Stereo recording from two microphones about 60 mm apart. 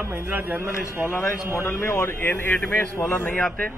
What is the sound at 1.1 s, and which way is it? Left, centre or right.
A man's voice, left.